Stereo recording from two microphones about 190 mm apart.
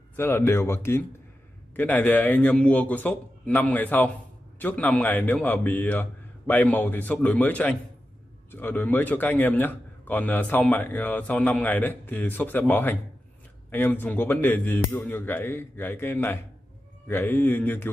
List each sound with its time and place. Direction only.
0.1 s a man's voice: 10° left (ahead or behind)